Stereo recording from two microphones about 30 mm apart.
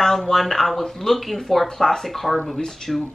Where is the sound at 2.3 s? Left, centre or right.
Left.